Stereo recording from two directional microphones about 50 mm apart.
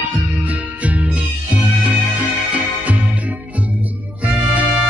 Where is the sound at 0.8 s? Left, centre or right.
Right.